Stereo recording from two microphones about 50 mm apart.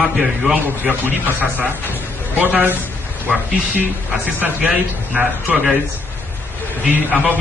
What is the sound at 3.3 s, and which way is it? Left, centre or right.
Speech, centre.